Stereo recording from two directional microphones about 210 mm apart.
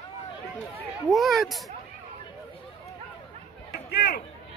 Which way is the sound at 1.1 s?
Centre (ahead or behind).